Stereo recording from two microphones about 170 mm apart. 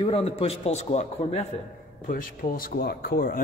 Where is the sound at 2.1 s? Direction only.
55° left (ahead or behind).